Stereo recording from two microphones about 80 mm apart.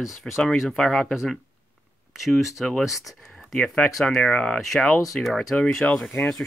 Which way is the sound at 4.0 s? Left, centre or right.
Centre.